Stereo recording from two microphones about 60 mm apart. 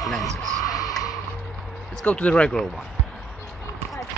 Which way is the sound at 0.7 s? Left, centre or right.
Left.